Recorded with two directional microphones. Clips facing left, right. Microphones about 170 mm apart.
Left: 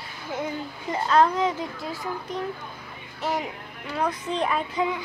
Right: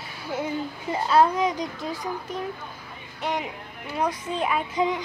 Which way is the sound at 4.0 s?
10° right (ahead or behind).